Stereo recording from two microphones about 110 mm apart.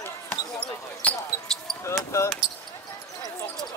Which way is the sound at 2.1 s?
25° left (ahead or behind).